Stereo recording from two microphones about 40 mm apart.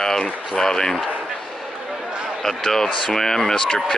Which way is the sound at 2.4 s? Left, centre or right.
Centre.